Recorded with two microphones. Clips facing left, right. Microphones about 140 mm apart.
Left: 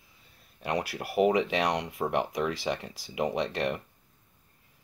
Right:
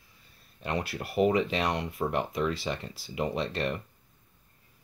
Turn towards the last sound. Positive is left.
turn(degrees=15)  # may be behind; listen again after turning